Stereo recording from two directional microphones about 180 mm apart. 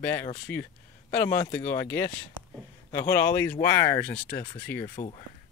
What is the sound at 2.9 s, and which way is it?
Speech, 15° left (ahead or behind).